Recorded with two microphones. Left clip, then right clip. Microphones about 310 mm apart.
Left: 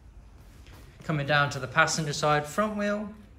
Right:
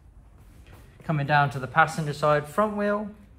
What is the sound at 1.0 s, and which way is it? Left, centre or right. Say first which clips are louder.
Speech: right 2 dB; centre.